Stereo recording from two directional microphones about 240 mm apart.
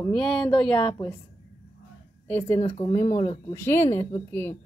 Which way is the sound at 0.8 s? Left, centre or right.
Centre.